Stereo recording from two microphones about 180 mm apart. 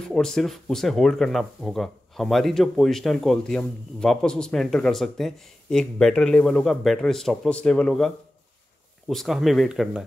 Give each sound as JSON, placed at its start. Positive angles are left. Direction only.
{"t": 0.1, "sound": "speech", "side_deg": 5}